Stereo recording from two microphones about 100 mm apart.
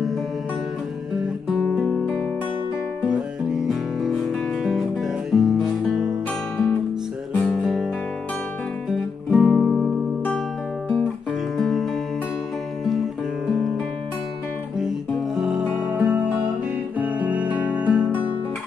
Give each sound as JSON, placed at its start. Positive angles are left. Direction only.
{"t": 1.5, "sound": "guitar", "side_deg": -5}
{"t": 5.3, "sound": "music", "side_deg": -5}
{"t": 7.3, "sound": "guitar", "side_deg": 10}
{"t": 9.3, "sound": "music", "side_deg": -5}
{"t": 11.5, "sound": "music", "side_deg": 0}
{"t": 14.8, "sound": "music", "side_deg": -5}
{"t": 15.8, "sound": "music", "side_deg": -15}